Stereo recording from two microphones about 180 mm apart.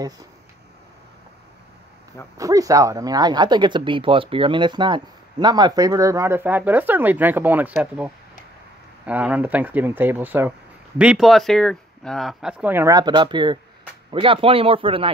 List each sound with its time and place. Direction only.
2.3 s speech: 20° right (ahead or behind)